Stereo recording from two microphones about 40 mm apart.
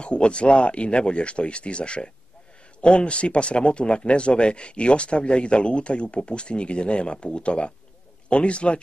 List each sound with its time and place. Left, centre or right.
0.0 s speech: left